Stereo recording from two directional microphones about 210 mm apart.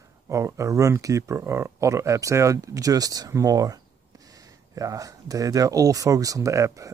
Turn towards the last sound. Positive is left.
turn(degrees=-15)  # may be behind; listen again after turning